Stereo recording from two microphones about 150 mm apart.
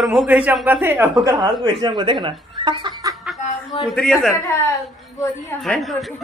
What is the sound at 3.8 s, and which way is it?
Speech, centre (ahead or behind).